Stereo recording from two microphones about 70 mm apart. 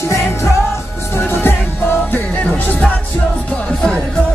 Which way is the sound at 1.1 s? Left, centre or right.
Left.